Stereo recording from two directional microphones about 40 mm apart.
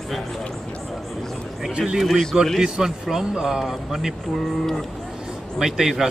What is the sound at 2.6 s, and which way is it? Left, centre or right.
Speech, centre.